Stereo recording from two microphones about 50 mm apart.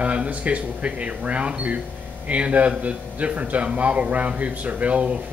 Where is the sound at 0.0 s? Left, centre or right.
Right.